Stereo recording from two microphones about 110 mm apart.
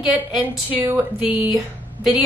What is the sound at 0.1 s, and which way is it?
A woman's voice, 15° right (ahead or behind).